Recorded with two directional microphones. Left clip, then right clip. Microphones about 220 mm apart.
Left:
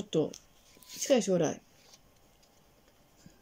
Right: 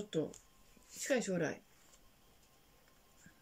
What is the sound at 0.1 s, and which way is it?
Speech, 15° left (ahead or behind).